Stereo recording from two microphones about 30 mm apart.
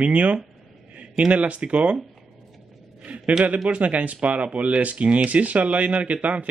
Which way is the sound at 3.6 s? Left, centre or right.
Right.